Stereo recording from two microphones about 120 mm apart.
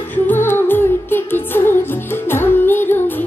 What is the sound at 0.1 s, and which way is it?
Music, 15° left (ahead or behind).